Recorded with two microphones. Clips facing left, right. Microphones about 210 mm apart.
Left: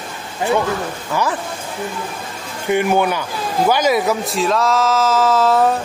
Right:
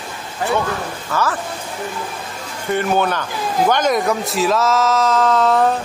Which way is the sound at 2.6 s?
10° left (ahead or behind).